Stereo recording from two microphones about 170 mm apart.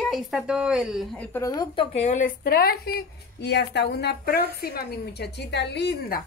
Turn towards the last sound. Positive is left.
turn(degrees=80)